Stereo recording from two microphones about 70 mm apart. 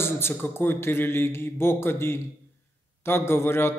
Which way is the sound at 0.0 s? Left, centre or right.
Left.